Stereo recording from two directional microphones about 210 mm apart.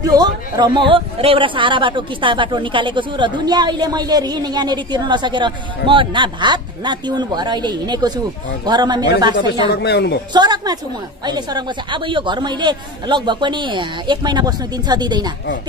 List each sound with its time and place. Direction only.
0.0 s a man's voice: 20° right (ahead or behind)
9.7 s speech: 50° left (ahead or behind)
10.3 s a man's voice: 20° right (ahead or behind)